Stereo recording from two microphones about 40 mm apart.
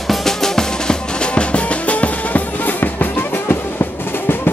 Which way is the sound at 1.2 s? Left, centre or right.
Left.